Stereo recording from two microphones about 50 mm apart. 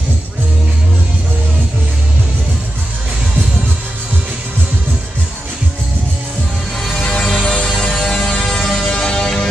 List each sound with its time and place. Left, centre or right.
6.8 s music: centre